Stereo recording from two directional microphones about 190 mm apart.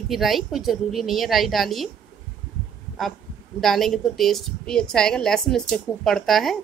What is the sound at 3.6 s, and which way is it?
A woman's voice, centre (ahead or behind).